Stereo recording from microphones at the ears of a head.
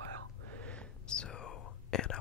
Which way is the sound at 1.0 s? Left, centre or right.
Left.